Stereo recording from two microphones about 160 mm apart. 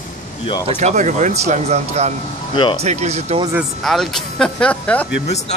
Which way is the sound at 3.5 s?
Centre (ahead or behind).